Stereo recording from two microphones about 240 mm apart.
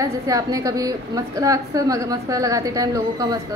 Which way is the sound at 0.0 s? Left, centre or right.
Centre.